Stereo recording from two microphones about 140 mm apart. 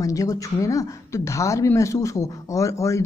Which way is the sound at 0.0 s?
25° left (ahead or behind).